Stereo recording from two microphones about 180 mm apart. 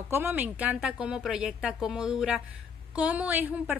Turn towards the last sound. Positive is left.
turn(degrees=-10)  # may be behind; listen again after turning